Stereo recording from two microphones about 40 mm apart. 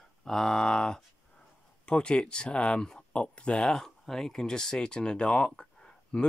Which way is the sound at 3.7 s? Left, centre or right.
Centre.